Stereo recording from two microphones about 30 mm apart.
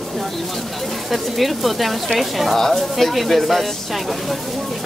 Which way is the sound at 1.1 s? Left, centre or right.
Centre.